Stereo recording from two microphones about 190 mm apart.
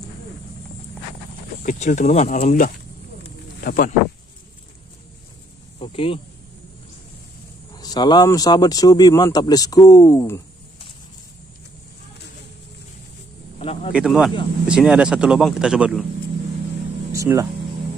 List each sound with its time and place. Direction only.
1.6 s speech: 45° left (ahead or behind)
3.6 s speech: 50° left (ahead or behind)
5.8 s speech: 30° left (ahead or behind)
7.7 s speech: 20° left (ahead or behind)
13.6 s a sound: 25° left (ahead or behind)
13.9 s speech: 5° right (ahead or behind)
17.1 s vehicle: 15° right (ahead or behind)